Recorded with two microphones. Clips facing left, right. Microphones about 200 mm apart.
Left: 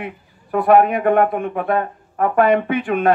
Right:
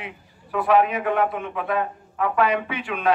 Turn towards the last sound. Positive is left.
turn(degrees=50)  # may be behind; listen again after turning